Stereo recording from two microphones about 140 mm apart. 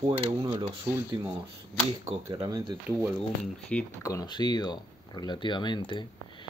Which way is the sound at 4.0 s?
25° left (ahead or behind).